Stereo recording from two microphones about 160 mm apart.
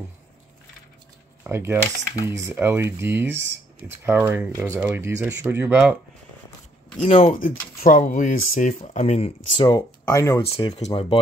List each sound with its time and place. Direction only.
1.4 s cutlery: 15° right (ahead or behind)
2.2 s speech: 15° right (ahead or behind)
7.0 s speech: 45° left (ahead or behind)
9.6 s speech: 25° left (ahead or behind)
10.4 s speech: 40° left (ahead or behind)